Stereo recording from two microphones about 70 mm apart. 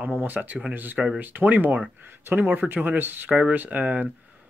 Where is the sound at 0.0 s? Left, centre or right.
Right.